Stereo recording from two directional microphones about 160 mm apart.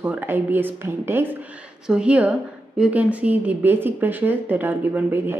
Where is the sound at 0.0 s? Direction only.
10° right (ahead or behind).